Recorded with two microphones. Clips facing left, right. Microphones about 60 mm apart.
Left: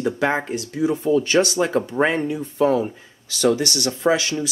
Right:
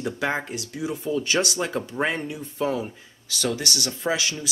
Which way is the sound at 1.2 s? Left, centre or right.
Centre.